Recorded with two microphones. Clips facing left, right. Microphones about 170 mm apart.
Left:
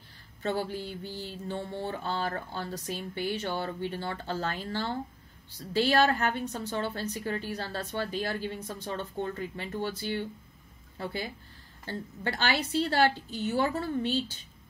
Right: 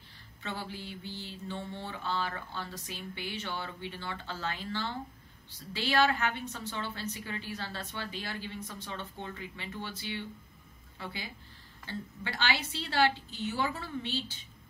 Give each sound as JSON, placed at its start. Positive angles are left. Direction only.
{"t": 0.4, "sound": "mantra", "side_deg": 45}
{"t": 11.8, "sound": "mantra", "side_deg": 45}